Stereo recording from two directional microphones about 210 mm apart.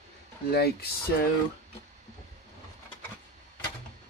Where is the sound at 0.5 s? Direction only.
50° left (ahead or behind).